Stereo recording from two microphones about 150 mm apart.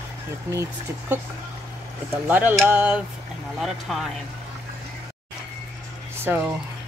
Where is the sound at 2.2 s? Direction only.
10° right (ahead or behind).